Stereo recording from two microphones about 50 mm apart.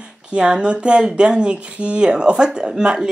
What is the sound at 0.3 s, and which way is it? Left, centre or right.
A woman's voice, right.